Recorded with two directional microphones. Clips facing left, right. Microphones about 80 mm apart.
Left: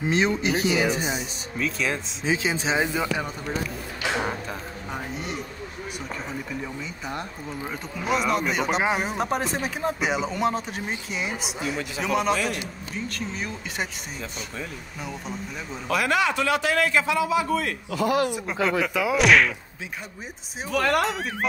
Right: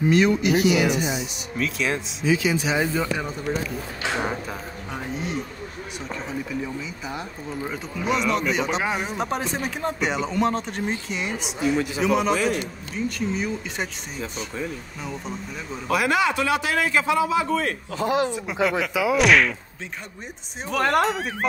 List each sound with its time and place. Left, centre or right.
0.1 s speech: left
1.6 s speech: centre
2.2 s speech: left
2.9 s speech: centre
4.9 s speech: centre
6.6 s speech: centre
15.9 s a man's voice: centre
18.9 s speech: centre
20.7 s speech: right
21.0 s speech: centre